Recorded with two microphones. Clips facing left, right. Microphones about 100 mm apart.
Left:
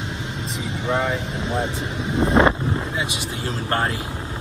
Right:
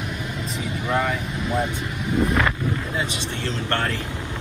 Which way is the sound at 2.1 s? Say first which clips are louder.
Left 5 dB; 25° left (ahead or behind).